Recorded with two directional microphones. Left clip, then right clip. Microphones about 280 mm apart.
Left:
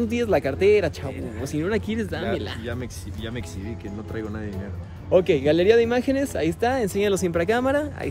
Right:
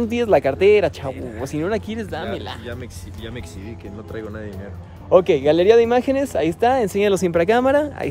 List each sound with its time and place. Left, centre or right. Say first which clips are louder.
0.1 s speech: right 8 dB; right
1.7 s speech: right 2 dB; centre
4.1 s speech: right 2 dB; centre
5.1 s speech: right 4 dB; right